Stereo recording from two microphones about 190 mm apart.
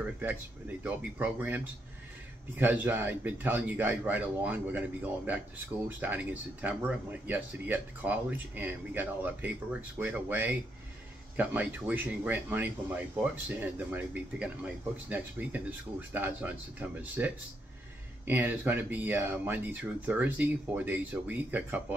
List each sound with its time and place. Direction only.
0.0 s speech: 10° right (ahead or behind)